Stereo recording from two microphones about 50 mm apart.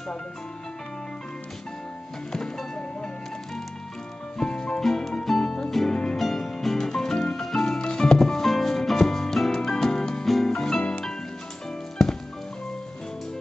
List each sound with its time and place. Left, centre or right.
4.4 s music: centre